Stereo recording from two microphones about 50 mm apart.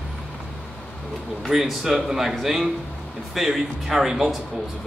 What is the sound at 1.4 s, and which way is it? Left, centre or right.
A man's voice, centre.